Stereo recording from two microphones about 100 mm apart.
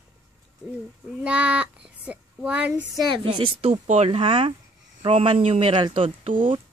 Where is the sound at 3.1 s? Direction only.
55° right (ahead or behind).